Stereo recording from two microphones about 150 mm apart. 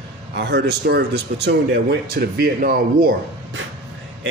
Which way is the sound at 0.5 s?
90° right.